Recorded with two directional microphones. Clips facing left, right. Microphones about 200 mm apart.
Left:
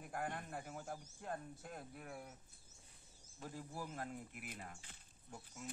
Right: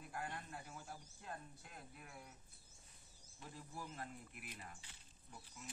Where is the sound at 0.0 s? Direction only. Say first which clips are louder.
Left 4 dB; 50° left (ahead or behind).